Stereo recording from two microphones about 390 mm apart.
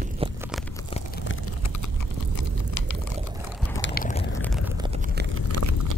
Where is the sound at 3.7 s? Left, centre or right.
Left.